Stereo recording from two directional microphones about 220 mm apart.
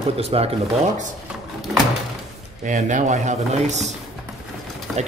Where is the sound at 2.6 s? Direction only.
35° right (ahead or behind).